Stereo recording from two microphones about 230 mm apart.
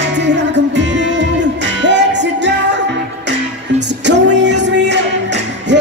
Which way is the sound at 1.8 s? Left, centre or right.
Right.